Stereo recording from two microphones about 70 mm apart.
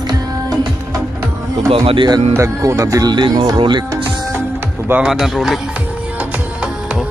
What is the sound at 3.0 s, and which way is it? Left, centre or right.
Speech, right.